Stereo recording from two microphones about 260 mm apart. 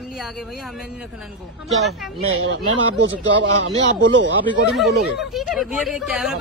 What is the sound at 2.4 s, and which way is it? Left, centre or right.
Speech, right.